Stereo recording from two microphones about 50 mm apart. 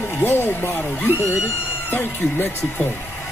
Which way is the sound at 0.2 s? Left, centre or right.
Left.